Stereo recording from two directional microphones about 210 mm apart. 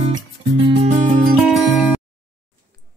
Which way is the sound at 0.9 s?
35° right (ahead or behind).